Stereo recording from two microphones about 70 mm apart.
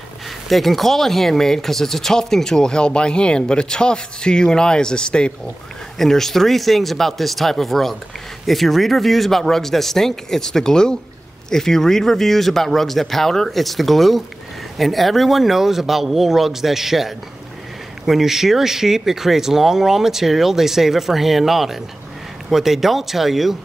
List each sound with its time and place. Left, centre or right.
0.5 s speech: centre